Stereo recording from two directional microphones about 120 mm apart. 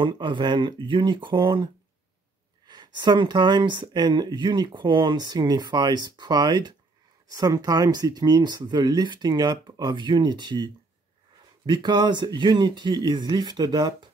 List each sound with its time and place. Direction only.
0.0 s speech: 40° right (ahead or behind)